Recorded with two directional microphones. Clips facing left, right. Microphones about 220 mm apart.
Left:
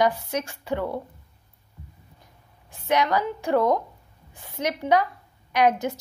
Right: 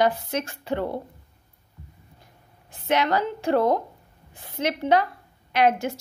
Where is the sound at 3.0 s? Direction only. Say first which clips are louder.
Right 1 dB; 15° left (ahead or behind).